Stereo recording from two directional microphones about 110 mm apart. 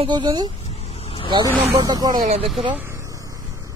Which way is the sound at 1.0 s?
60° left (ahead or behind).